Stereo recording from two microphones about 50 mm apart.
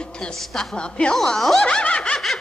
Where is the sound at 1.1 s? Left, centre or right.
Centre.